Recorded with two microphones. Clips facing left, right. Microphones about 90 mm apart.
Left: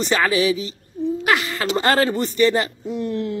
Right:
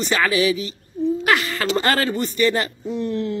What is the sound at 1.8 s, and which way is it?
Speech, 30° left (ahead or behind).